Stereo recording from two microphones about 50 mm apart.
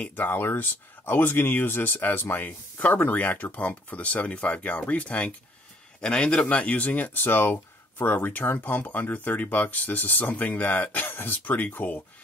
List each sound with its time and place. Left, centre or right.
0.0 s speech: left